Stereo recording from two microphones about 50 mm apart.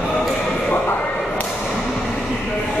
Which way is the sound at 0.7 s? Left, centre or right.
Left.